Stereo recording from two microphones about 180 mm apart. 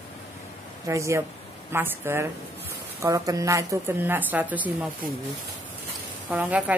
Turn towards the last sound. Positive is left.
turn(degrees=-10)  # may be behind; listen again after turning